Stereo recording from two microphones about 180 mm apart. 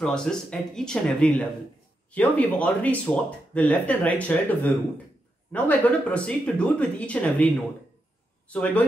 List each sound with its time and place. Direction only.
0.0 s speech: 5° left (ahead or behind)